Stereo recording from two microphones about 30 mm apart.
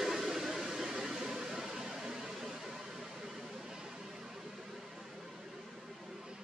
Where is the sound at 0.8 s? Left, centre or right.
Right.